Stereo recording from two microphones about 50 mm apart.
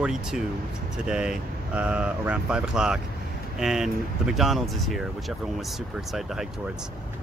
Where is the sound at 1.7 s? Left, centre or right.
Right.